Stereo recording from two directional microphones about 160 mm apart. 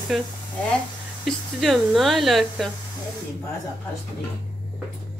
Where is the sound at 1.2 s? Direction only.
Centre (ahead or behind).